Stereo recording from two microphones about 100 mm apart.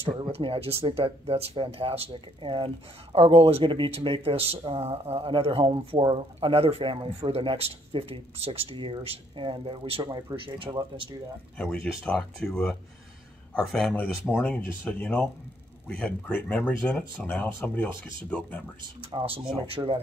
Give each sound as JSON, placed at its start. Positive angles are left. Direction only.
{"t": 0.3, "sound": "speech", "side_deg": -70}
{"t": 11.5, "sound": "speech", "side_deg": 15}
{"t": 19.1, "sound": "speech", "side_deg": -65}